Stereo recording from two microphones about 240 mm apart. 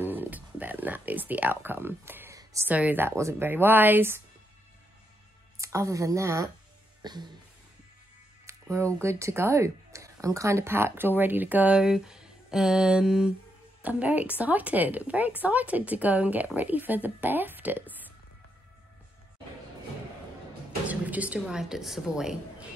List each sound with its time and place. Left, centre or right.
0.0 s speech: centre
5.6 s a woman's voice: centre
7.0 s music: centre
8.5 s a woman's voice: centre
20.8 s speech: centre